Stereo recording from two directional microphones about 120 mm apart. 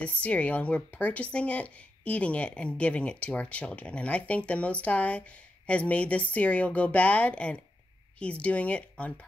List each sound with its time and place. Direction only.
0.0 s speech: 10° left (ahead or behind)